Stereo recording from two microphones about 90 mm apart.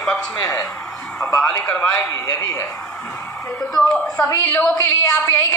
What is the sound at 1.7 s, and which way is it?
Speech, 15° left (ahead or behind).